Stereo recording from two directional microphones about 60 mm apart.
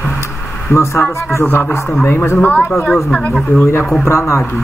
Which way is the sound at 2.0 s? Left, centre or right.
Left.